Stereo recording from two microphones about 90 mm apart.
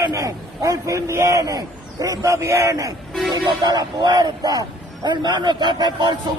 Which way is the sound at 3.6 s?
50° right (ahead or behind).